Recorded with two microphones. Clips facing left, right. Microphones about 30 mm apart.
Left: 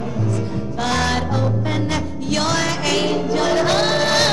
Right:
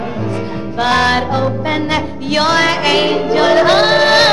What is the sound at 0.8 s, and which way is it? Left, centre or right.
Music, right.